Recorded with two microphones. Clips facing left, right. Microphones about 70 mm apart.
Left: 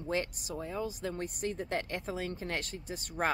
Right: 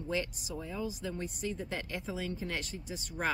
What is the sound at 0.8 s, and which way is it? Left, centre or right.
Speech, left.